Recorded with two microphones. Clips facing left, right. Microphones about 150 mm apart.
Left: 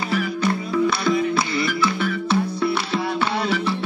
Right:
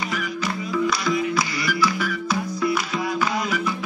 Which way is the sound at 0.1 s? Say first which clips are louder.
Left 5 dB; 30° left (ahead or behind).